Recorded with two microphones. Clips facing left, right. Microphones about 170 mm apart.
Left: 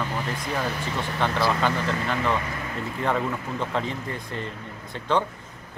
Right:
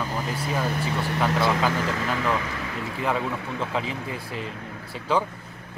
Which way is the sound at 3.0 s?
Centre (ahead or behind).